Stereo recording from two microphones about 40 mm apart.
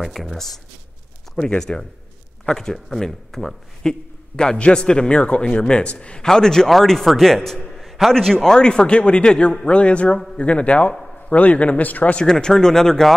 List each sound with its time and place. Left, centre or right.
0.0 s speech: centre
1.6 s speech: centre
4.6 s a man's voice: left
6.2 s speech: centre
7.7 s a sound: centre
8.1 s a man's voice: centre; by 12.2 s left
12.3 s speech: centre